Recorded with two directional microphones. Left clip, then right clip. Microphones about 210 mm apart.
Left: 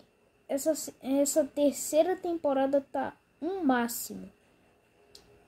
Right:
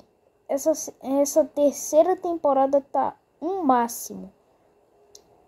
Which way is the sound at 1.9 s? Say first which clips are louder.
Right 9 dB; 15° right (ahead or behind).